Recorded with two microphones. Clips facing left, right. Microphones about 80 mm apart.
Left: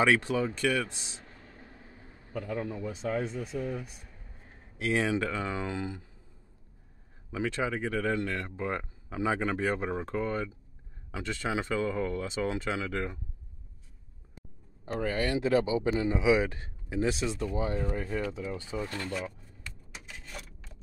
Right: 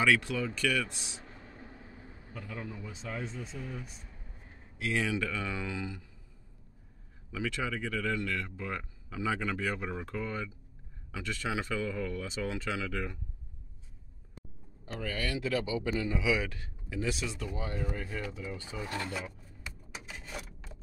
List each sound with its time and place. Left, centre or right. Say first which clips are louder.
0.0 s speech: left 3 dB; left
1.2 s a sound: right 2 dB; right
2.4 s speech: left 7 dB; left
2.9 s speech: left 9 dB; centre
4.8 s speech: left 4 dB; left
7.2 s speech: left 4 dB; left
11.2 s speech: left 3 dB; left
14.9 s speech: left 6 dB; left
18.8 s a sound: left 1 dB; centre